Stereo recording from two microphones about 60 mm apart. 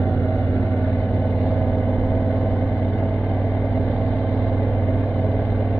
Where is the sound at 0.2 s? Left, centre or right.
Left.